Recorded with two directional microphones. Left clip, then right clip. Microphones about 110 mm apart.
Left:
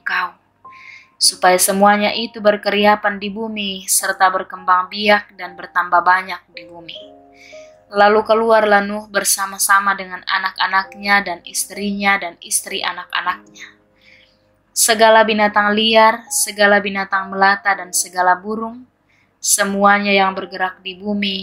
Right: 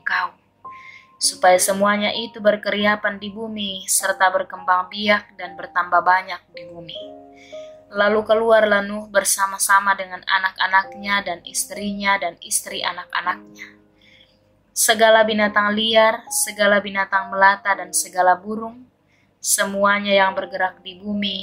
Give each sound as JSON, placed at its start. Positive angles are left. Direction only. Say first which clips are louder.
{"t": 0.0, "sound": "music", "louder": "left 2 dB", "side_deg": 60}
{"t": 1.2, "sound": "speech", "louder": "left 2 dB", "side_deg": 50}
{"t": 15.0, "sound": "speech", "louder": "left 4 dB", "side_deg": 50}